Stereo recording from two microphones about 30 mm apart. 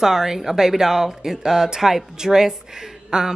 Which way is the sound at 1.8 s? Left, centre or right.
Centre.